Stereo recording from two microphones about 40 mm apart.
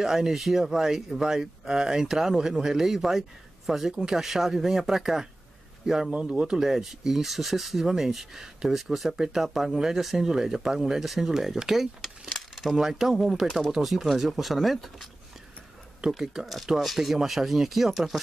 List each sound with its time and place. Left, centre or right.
0.0 s speech: centre
3.9 s speech: centre
6.4 s speech: centre
16.1 s speech: centre